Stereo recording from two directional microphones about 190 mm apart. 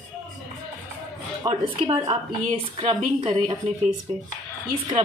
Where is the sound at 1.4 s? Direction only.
30° right (ahead or behind).